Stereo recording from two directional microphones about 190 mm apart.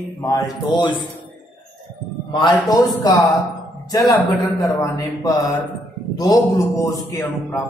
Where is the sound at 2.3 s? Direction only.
25° left (ahead or behind).